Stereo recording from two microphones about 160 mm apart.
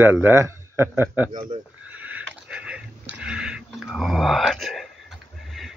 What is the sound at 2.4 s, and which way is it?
Dog, 5° right (ahead or behind).